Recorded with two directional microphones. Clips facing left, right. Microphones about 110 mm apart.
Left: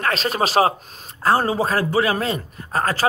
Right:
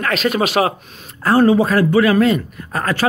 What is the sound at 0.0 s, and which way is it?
A man's voice, 35° left (ahead or behind).